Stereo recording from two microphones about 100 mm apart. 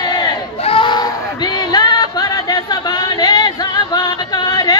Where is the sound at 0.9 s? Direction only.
45° left (ahead or behind).